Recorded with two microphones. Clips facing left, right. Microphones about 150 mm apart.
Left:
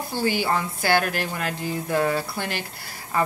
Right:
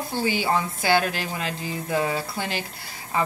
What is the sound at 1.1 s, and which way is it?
Speech, 50° left (ahead or behind).